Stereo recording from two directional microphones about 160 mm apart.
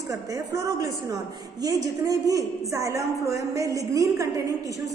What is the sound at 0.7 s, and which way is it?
A woman's voice, 20° right (ahead or behind).